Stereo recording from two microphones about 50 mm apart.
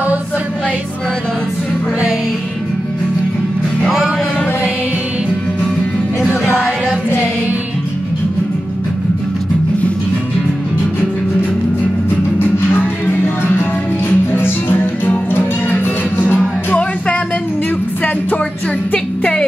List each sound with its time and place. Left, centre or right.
12.4 s music: left